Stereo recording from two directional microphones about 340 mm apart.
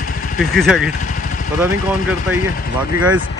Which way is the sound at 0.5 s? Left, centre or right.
Centre.